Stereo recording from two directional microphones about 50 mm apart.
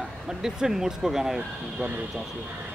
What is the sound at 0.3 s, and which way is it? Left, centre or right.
Speech, centre.